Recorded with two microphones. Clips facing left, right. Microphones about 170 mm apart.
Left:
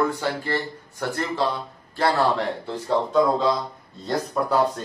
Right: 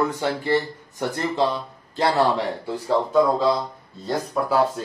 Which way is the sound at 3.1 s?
5° right (ahead or behind).